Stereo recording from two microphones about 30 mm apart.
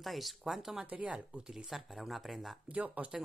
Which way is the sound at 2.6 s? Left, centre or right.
Right.